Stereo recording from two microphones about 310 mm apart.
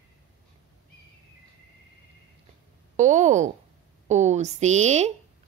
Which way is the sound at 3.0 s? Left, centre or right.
Right.